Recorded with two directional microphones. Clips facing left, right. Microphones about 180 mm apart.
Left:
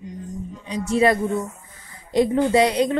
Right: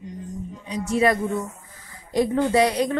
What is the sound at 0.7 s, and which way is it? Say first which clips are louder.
A woman's voice: left 2 dB; 25° left (ahead or behind).